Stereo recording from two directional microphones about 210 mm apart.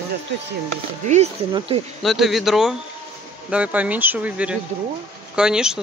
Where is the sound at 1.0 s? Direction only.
35° right (ahead or behind).